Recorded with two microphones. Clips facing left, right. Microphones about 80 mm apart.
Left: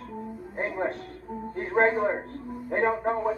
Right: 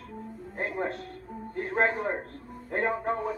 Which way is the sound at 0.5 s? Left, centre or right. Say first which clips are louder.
Left 2 dB; centre.